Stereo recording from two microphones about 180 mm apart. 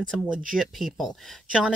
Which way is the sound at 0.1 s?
5° left (ahead or behind).